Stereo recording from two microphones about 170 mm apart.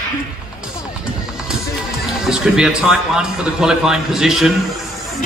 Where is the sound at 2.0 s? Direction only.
5° right (ahead or behind).